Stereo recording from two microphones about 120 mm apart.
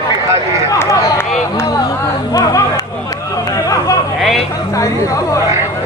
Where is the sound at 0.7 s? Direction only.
30° left (ahead or behind).